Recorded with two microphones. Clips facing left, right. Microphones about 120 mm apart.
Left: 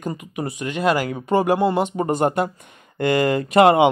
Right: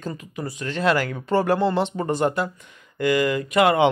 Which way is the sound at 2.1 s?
55° left (ahead or behind).